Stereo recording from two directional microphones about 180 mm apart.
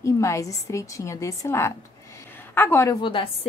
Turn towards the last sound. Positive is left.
turn(degrees=25)  # may be behind; listen again after turning